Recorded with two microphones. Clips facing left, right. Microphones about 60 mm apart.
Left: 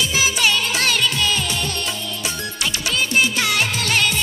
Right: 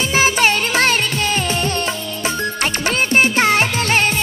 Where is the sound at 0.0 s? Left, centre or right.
Right.